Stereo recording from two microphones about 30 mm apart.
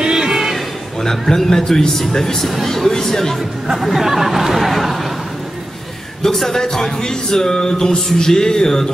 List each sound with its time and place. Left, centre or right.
0.1 s a sound: centre
1.0 s speech: centre
3.6 s speech: centre
6.2 s speech: centre